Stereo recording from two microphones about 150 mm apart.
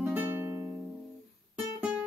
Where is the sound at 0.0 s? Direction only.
10° right (ahead or behind).